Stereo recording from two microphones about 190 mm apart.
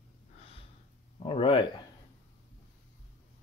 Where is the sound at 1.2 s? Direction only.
30° left (ahead or behind).